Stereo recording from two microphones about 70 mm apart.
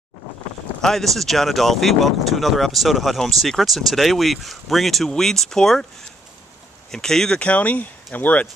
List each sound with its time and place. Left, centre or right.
0.7 s speech: centre
6.9 s speech: centre
7.3 s speech: centre